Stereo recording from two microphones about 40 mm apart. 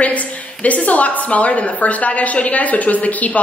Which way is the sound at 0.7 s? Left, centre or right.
Left.